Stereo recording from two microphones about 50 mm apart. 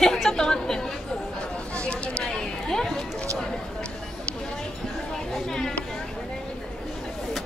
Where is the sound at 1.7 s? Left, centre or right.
Left.